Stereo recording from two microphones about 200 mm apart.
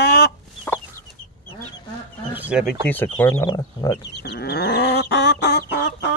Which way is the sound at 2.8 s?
10° left (ahead or behind).